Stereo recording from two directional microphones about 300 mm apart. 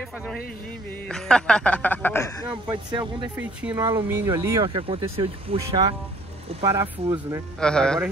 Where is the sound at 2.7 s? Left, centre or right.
Centre.